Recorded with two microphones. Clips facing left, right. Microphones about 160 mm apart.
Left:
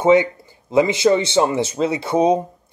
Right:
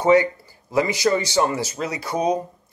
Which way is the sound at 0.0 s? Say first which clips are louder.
Left 2 dB; 20° left (ahead or behind).